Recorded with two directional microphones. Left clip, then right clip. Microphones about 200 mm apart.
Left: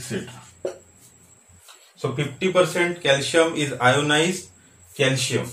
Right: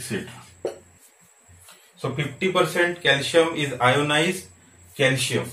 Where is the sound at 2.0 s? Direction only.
30° left (ahead or behind).